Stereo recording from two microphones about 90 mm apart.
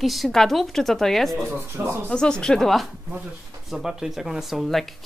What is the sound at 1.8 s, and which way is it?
Speech, 25° right (ahead or behind).